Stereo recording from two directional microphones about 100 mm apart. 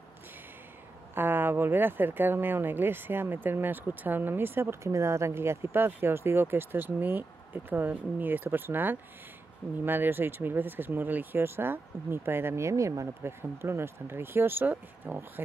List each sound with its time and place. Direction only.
1.1 s speech: 20° right (ahead or behind)